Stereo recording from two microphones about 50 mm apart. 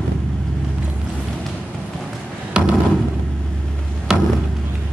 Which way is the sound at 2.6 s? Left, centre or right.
Right.